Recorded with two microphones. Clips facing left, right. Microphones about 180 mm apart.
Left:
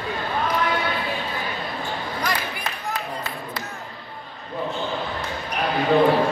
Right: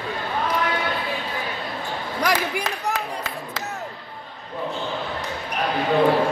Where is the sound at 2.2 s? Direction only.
90° right.